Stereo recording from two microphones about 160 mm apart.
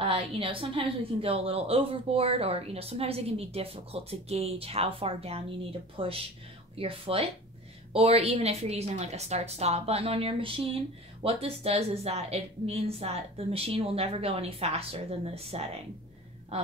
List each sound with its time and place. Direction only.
0.0 s a woman's voice: 35° right (ahead or behind)